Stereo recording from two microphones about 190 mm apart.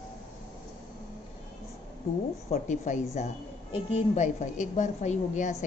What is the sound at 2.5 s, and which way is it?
A woman's voice, 40° left (ahead or behind).